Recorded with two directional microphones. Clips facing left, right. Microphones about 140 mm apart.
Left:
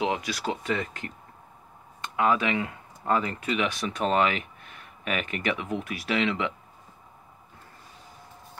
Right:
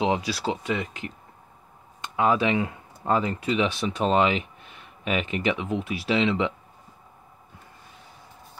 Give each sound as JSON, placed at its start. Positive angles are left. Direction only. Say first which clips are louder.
{"t": 0.0, "sound": "speech", "louder": "right 3 dB", "side_deg": -30}
{"t": 2.1, "sound": "speech", "louder": "right 2 dB", "side_deg": -25}